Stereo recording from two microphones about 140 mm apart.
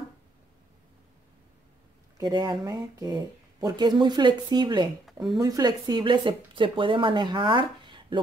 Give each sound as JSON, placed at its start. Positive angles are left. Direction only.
{"t": 2.1, "sound": "speech", "side_deg": -30}